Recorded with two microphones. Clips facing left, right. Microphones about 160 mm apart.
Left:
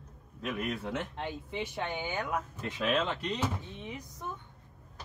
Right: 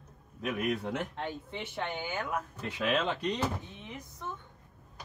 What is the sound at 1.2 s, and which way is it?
Speech, 10° left (ahead or behind).